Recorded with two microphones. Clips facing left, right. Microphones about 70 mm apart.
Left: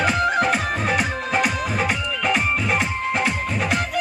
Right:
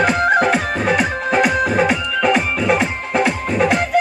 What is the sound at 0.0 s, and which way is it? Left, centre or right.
Music, right.